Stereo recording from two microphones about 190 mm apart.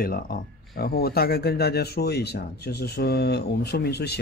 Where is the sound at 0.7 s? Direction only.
50° left (ahead or behind).